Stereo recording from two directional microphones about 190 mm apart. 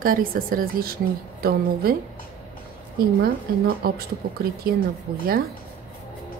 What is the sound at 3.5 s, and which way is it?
Speech, 50° right (ahead or behind).